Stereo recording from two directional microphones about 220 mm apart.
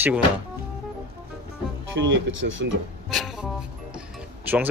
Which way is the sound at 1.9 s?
60° right (ahead or behind).